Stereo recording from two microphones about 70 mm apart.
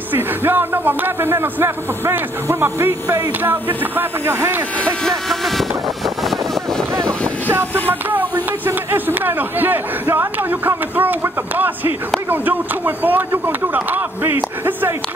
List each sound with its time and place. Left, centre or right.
0.1 s speech: right
3.4 s speech: right
4.8 s speech: centre
7.9 s speech: right